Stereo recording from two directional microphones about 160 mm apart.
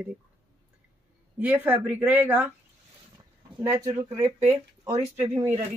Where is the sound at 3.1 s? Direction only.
20° right (ahead or behind).